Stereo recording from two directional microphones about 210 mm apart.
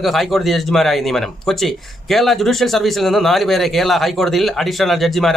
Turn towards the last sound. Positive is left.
turn(degrees=0)  # may be behind; listen again after turning